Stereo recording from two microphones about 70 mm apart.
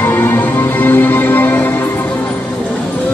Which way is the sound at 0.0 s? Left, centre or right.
Left.